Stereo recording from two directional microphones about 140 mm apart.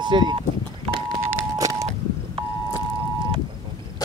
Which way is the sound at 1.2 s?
25° right (ahead or behind).